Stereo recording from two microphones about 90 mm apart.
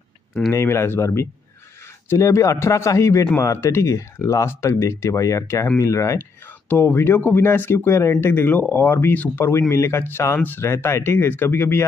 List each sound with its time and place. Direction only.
0.5 s speech: 30° left (ahead or behind)
6.7 s speech: 20° left (ahead or behind)